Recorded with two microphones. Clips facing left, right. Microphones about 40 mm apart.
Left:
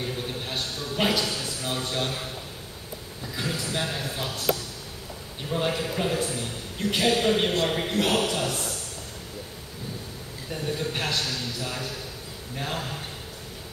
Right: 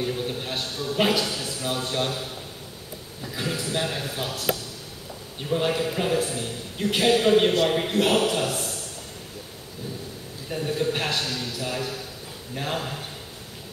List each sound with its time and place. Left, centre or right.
0.0 s a sound: centre
3.3 s a man's voice: centre
5.5 s a man's voice: centre; by 8.6 s right
10.5 s a man's voice: centre